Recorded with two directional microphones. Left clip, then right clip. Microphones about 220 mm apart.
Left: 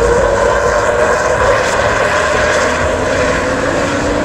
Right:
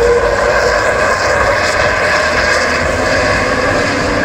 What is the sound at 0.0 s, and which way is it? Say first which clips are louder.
Vehicle: even; 5° left (ahead or behind).